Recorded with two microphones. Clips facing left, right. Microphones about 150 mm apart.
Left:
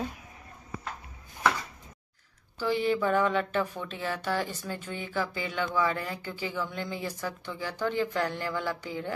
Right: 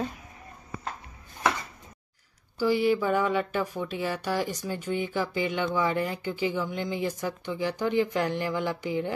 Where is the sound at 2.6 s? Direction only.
10° right (ahead or behind).